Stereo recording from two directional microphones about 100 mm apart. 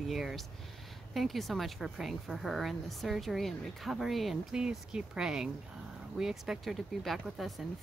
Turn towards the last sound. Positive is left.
turn(degrees=0)  # may be behind; listen again after turning